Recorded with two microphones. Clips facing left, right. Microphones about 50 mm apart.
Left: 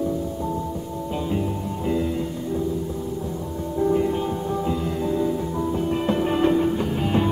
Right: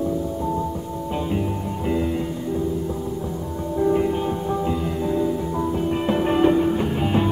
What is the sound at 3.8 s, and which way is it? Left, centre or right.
Music, centre.